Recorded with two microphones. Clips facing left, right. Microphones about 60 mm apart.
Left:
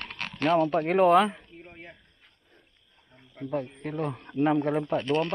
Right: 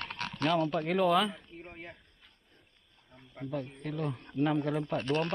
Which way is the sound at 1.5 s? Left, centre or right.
Centre.